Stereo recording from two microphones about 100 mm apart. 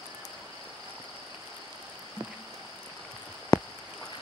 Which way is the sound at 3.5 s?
35° left (ahead or behind).